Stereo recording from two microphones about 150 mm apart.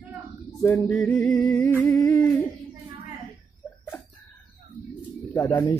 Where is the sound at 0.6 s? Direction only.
15° left (ahead or behind).